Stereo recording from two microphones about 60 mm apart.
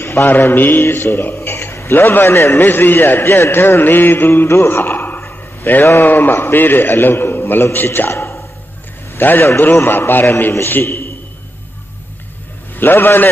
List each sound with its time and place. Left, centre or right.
0.0 s a man's voice: left
5.3 s a sound: left
5.9 s a man's voice: left
8.1 s a sound: left
9.1 s a man's voice: left
12.7 s a man's voice: left